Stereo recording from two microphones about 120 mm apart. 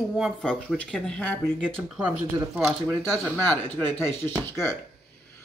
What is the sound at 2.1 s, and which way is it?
Speech, 10° right (ahead or behind).